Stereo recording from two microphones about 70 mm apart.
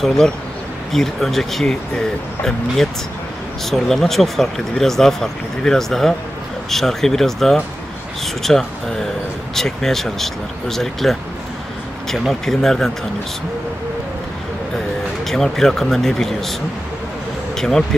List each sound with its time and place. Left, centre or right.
0.9 s speech: centre
15.2 s speech: centre
17.6 s speech: centre